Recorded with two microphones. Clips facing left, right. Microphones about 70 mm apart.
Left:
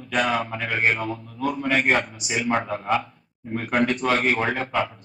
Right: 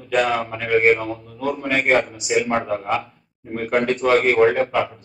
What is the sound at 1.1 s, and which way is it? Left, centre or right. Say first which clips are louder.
Speech: right 2 dB; right.